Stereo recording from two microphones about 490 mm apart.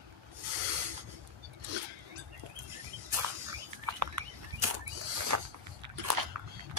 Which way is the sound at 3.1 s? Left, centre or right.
Right.